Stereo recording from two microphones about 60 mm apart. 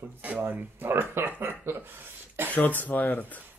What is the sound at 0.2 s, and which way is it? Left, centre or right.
Speech, right.